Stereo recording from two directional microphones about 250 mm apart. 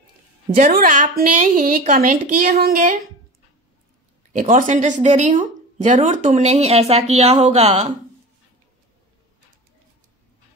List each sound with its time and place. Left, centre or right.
0.6 s a woman's voice: right
4.3 s a woman's voice: right